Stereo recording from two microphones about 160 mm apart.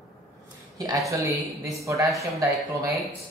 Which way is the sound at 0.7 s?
20° right (ahead or behind).